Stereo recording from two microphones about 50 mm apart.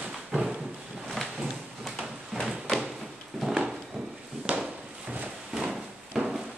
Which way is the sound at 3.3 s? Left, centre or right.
Centre.